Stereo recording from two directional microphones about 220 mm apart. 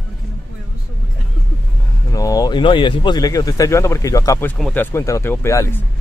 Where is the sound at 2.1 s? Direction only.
15° left (ahead or behind).